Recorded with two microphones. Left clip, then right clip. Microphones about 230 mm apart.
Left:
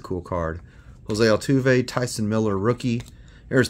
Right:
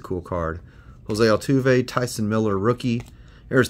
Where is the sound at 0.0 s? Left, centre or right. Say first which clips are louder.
Even; centre.